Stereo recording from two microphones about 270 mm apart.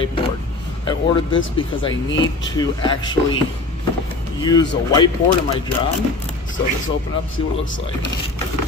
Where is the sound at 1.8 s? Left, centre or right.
Centre.